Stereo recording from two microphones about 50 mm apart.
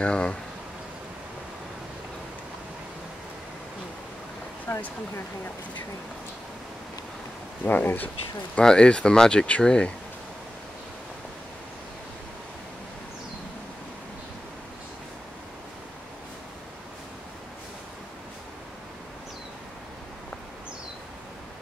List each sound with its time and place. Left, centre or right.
0.0 s speech: left
4.7 s speech: left
7.6 s speech: left
8.5 s speech: centre